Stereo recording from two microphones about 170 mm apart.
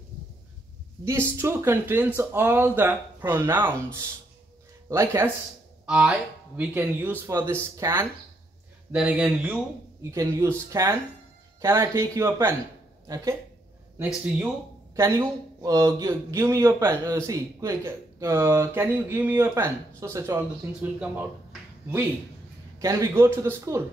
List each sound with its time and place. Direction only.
1.0 s speech: 15° right (ahead or behind)
8.9 s speech: 5° right (ahead or behind)
10.1 s speech: 20° right (ahead or behind)
15.6 s speech: 20° right (ahead or behind)
21.0 s a sound: 10° right (ahead or behind)
22.8 s speech: 20° right (ahead or behind)